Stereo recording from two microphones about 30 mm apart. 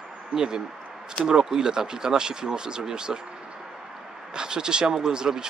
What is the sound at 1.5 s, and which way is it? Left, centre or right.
Speech, right.